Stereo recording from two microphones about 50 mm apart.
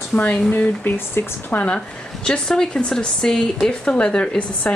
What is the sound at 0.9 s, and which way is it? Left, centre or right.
Speech, left.